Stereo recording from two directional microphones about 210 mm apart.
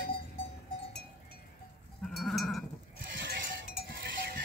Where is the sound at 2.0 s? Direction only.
Centre (ahead or behind).